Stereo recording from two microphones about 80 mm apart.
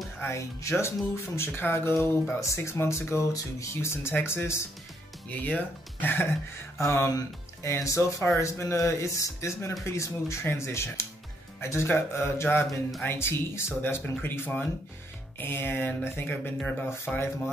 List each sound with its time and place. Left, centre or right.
0.2 s speech: left
6.8 s speech: left